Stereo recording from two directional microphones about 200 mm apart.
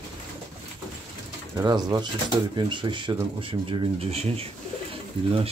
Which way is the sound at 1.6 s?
20° right (ahead or behind).